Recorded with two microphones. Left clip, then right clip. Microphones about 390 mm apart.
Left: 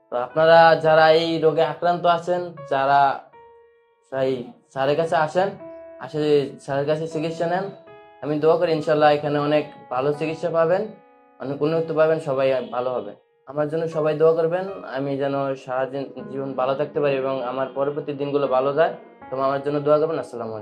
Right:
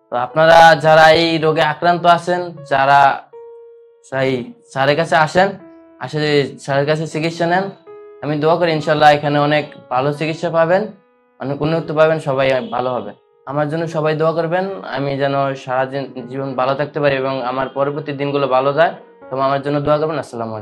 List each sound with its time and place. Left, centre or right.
0.1 s speech: right
4.1 s speech: right